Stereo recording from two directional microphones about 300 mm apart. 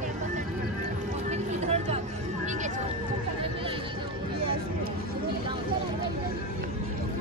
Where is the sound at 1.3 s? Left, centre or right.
Right.